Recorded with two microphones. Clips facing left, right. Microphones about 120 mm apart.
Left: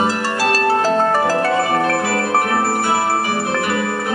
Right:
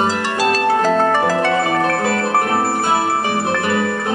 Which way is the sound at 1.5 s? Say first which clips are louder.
Even; 10° left (ahead or behind).